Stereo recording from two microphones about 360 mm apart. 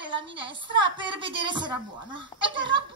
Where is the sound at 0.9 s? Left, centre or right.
Centre.